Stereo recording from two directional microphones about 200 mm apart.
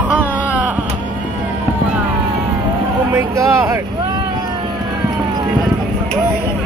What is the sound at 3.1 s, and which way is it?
Speech, 15° right (ahead or behind).